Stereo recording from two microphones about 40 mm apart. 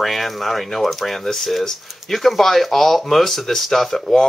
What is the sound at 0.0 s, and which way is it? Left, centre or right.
Speech, centre.